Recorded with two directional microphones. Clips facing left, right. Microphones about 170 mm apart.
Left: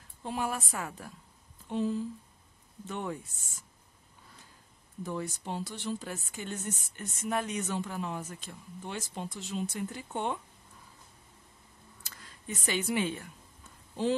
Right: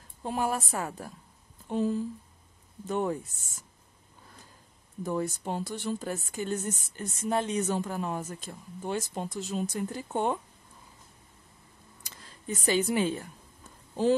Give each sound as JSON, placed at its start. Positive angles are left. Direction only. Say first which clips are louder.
{"t": 0.2, "sound": "speech", "louder": "right 4 dB", "side_deg": -40}
{"t": 5.0, "sound": "speech", "louder": "right 5 dB", "side_deg": -45}
{"t": 12.3, "sound": "a woman's voice", "louder": "right 6 dB", "side_deg": -35}